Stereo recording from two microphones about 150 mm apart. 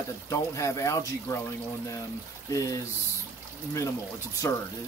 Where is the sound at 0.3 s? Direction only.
20° left (ahead or behind).